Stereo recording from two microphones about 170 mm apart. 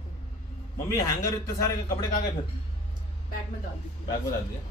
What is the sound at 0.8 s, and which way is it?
Speech, 20° left (ahead or behind).